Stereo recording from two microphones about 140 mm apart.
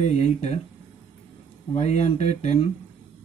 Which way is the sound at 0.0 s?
55° left (ahead or behind).